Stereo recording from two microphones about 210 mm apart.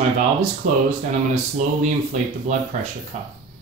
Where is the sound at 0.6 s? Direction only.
40° right (ahead or behind).